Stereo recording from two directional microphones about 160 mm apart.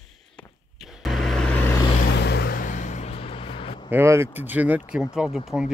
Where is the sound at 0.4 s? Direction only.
10° left (ahead or behind).